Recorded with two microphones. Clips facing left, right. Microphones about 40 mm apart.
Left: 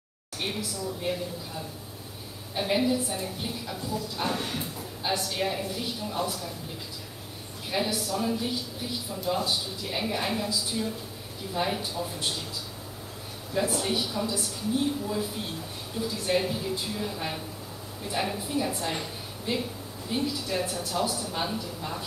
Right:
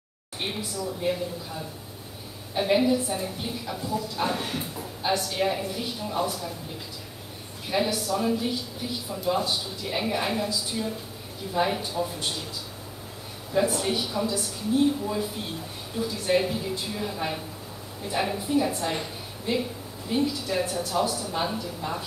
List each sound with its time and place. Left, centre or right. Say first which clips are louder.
0.4 s a woman's voice: right 1 dB; centre
0.7 s speech: right 6 dB; centre
2.5 s a woman's voice: right 4 dB; centre
7.7 s a woman's voice: right 3 dB; centre
13.5 s speech: right 3 dB; centre
16.0 s a woman's voice: right 3 dB; centre